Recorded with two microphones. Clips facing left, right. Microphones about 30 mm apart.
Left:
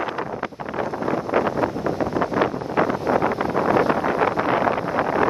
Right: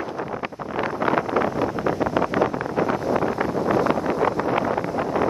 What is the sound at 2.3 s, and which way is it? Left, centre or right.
Vehicle, left.